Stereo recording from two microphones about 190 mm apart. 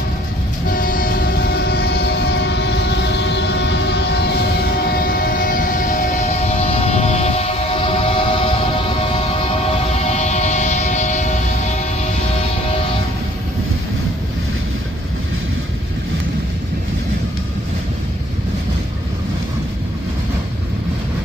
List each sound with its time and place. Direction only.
0.7 s train: 50° left (ahead or behind)
4.9 s train: 50° left (ahead or behind); by 8.5 s 30° left (ahead or behind)
9.9 s music: 35° left (ahead or behind)